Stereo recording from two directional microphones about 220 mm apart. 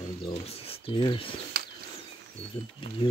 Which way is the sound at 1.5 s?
45° right (ahead or behind).